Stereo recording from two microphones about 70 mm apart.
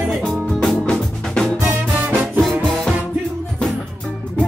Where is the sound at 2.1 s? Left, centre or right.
Centre.